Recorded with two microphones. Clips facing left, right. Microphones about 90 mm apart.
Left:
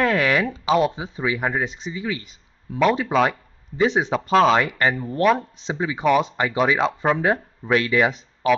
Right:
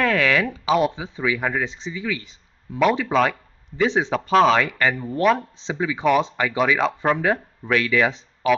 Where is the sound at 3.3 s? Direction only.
15° left (ahead or behind).